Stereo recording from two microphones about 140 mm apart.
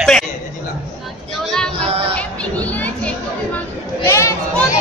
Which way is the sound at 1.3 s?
5° left (ahead or behind).